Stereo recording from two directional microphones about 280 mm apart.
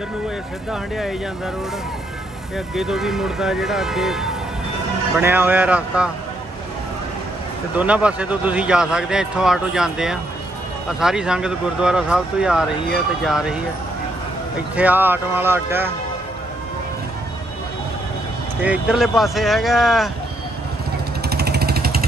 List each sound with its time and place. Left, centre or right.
0.7 s speech: centre
2.5 s speech: centre
7.7 s speech: centre
14.8 s speech: centre
18.6 s speech: centre
21.3 s vehicle: right